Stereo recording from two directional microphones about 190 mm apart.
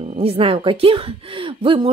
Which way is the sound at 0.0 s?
30° right (ahead or behind).